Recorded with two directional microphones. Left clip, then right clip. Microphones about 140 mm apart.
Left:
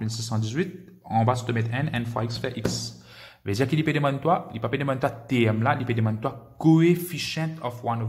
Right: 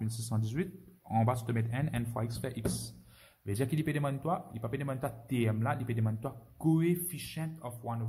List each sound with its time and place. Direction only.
0.0 s speech: 15° right (ahead or behind)
3.4 s speech: 5° right (ahead or behind)